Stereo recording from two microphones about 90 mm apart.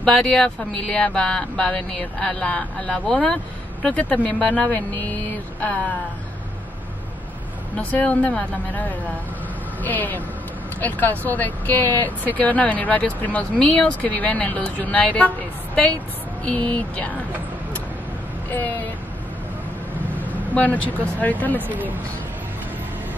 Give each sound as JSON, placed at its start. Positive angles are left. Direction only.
{"t": 0.0, "sound": "speech", "side_deg": 10}
{"t": 7.7, "sound": "speech", "side_deg": 15}
{"t": 18.5, "sound": "speech", "side_deg": 20}
{"t": 20.2, "sound": "speech", "side_deg": 15}
{"t": 21.5, "sound": "speech", "side_deg": -20}